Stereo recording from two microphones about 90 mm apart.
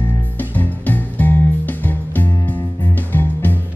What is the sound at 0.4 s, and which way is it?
Music, 20° left (ahead or behind).